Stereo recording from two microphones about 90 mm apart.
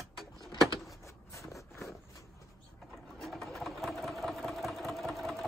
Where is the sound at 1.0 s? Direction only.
35° left (ahead or behind).